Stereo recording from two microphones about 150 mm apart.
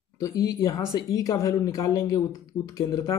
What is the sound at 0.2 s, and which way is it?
A man's voice, 20° left (ahead or behind).